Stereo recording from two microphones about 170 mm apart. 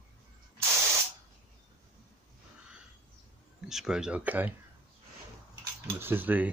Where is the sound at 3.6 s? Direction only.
Centre (ahead or behind).